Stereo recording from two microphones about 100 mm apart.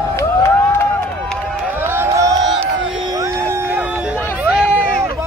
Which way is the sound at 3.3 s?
25° right (ahead or behind).